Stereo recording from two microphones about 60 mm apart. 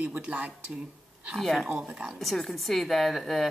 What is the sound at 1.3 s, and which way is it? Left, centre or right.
Speech, centre.